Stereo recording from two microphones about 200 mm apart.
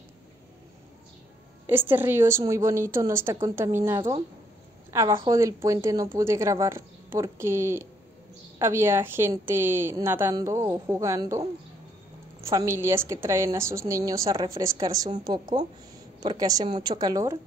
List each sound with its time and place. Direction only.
1.7 s a woman's voice: 10° right (ahead or behind)